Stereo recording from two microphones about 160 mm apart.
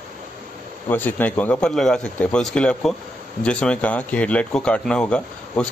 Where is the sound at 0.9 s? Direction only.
10° left (ahead or behind).